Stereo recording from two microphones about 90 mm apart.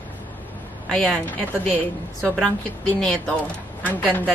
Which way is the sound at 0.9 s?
10° left (ahead or behind).